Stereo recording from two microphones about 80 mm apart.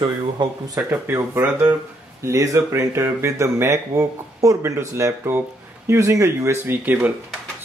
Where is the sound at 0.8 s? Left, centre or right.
Right.